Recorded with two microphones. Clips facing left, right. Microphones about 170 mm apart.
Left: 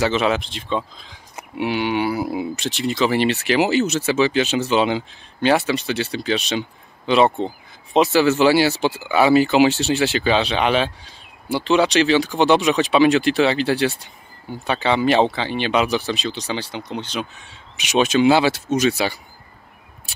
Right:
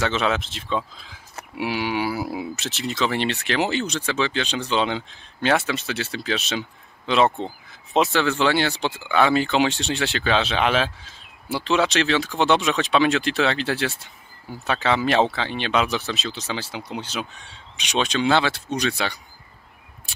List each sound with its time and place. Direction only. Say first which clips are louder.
0.0 s speech: left 4 dB; centre (ahead or behind)
17.4 s speech: left 2 dB; 5° left (ahead or behind)